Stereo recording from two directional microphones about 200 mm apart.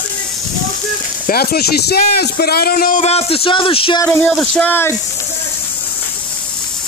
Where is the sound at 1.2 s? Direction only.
50° left (ahead or behind); by 4.0 s 25° left (ahead or behind).